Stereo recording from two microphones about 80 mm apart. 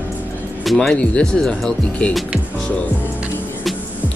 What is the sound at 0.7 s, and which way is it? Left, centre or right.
Speech, centre.